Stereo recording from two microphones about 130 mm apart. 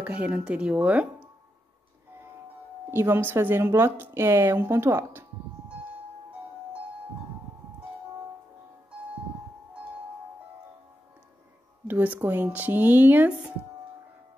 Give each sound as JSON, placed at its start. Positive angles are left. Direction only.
{"t": 0.0, "sound": "speech", "side_deg": -10}
{"t": 2.9, "sound": "speech", "side_deg": -15}
{"t": 11.9, "sound": "speech", "side_deg": -15}